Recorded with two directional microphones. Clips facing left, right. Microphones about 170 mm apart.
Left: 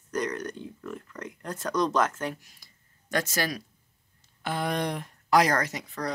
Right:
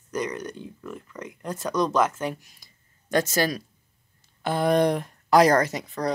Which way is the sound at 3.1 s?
25° right (ahead or behind).